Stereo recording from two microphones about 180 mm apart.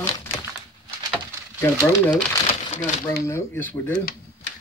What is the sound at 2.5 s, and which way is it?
Crumpling, 35° left (ahead or behind).